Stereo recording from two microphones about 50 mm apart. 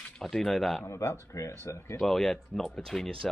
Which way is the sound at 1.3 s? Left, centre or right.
Left.